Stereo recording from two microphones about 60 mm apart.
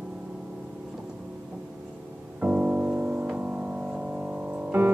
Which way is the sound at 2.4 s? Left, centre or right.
Right.